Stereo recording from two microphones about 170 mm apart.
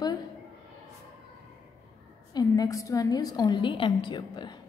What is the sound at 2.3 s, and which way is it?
A woman's voice, 20° left (ahead or behind).